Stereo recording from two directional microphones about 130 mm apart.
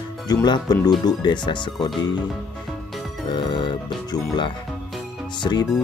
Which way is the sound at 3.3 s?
35° left (ahead or behind).